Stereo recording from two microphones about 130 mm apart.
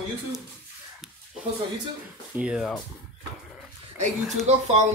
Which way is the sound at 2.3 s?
10° right (ahead or behind).